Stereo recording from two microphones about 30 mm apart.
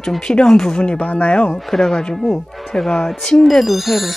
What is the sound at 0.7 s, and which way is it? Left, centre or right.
Speech, left.